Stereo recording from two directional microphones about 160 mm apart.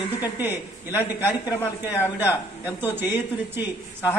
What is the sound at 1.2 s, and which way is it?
Speech, 15° left (ahead or behind).